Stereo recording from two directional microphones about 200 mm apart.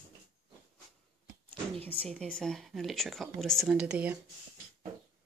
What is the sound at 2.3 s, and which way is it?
Speech, centre (ahead or behind).